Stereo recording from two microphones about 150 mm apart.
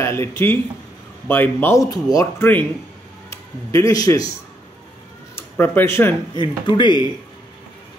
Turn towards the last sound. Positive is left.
turn(degrees=30)  # may be behind; listen again after turning